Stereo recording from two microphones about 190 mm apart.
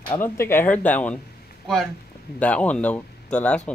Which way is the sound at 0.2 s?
10° left (ahead or behind).